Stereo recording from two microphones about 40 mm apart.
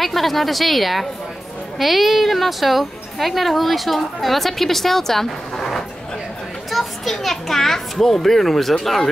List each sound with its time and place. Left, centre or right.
0.0 s a woman's voice: centre